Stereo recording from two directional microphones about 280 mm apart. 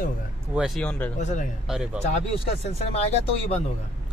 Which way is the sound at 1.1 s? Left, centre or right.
Left.